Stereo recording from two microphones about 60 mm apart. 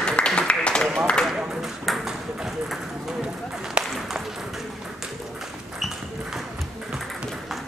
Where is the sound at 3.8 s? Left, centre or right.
Centre.